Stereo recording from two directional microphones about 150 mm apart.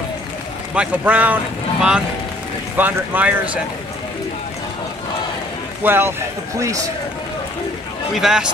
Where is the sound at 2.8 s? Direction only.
10° right (ahead or behind).